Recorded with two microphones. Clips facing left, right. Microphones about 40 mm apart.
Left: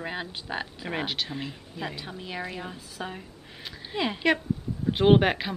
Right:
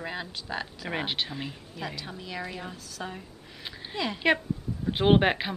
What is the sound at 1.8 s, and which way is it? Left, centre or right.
Speech, centre.